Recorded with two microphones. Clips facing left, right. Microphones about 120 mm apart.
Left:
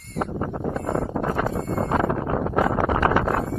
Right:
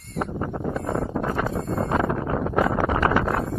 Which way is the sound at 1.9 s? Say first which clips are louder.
Left 1 dB; 25° left (ahead or behind).